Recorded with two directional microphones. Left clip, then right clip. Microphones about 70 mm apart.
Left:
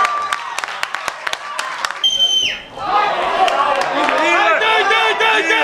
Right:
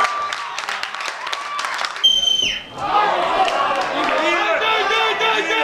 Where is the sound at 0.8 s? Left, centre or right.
Left.